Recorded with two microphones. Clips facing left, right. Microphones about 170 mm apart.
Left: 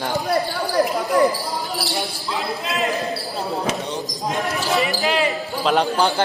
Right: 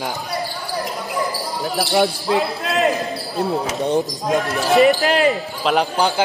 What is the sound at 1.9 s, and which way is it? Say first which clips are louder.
Speech: right 9 dB; 65° right (ahead or behind).